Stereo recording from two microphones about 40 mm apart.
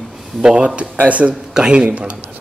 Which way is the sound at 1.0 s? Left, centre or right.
Right.